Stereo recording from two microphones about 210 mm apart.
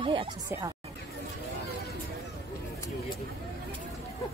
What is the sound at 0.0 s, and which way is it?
Speech, 25° right (ahead or behind).